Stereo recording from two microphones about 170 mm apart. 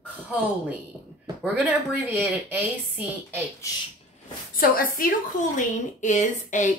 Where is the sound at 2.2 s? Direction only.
10° right (ahead or behind).